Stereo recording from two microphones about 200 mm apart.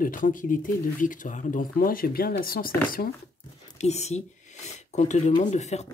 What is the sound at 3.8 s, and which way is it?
Speech, 35° left (ahead or behind).